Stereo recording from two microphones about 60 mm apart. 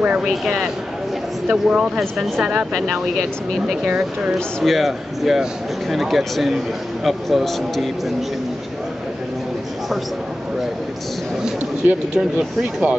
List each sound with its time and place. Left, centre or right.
0.0 s speech: centre
0.3 s speech: centre
2.0 s a man's voice: centre
3.8 s speech: centre
4.6 s a man's voice: centre
11.8 s speech: centre